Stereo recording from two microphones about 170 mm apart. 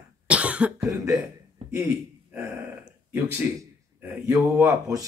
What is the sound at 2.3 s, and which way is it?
Speech, 10° right (ahead or behind).